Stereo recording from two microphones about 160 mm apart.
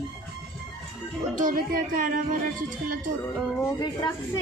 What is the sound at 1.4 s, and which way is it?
Speech, 55° right (ahead or behind).